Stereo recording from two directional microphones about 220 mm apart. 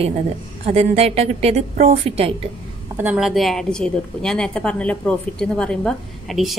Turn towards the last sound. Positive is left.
turn(degrees=0)  # may be behind; listen again after turning